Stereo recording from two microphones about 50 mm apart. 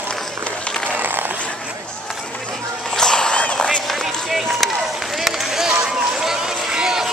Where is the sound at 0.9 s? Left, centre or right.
Right.